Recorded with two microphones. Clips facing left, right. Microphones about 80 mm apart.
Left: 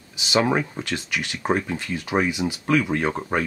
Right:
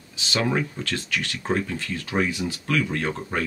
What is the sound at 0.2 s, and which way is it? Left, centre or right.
Speech, centre.